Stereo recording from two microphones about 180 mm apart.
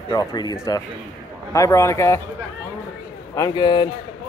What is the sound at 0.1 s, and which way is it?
A man's voice, 20° left (ahead or behind).